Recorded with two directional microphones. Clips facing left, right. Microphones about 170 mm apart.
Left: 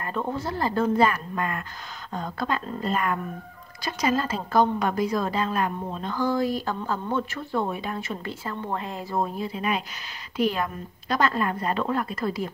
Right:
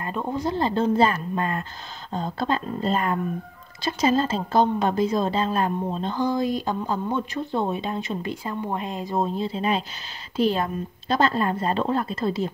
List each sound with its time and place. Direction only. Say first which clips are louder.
0.3 s a woman's voice: right 5 dB; 20° right (ahead or behind)